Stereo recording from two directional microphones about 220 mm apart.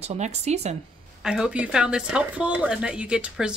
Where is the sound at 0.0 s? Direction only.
30° right (ahead or behind).